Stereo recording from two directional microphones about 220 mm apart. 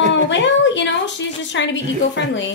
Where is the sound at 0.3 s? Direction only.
55° left (ahead or behind).